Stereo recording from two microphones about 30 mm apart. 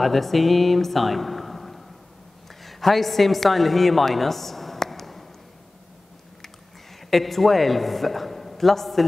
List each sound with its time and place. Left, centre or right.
0.0 s a woman's voice: centre
7.0 s a man's voice: centre